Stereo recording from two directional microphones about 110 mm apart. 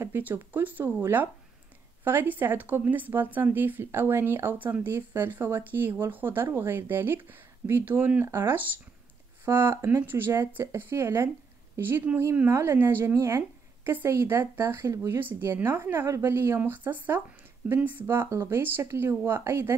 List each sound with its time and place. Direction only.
0.0 s speech: 15° right (ahead or behind)